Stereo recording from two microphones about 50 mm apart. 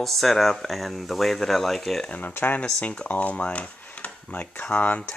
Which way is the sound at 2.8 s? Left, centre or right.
Left.